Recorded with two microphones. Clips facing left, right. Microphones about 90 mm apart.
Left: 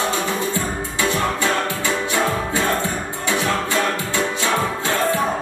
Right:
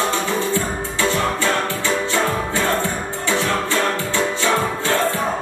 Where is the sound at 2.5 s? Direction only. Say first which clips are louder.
Right 1 dB; 20° left (ahead or behind).